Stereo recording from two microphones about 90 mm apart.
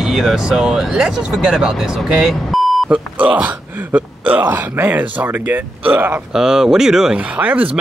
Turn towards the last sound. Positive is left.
turn(degrees=-15)  # may be behind; listen again after turning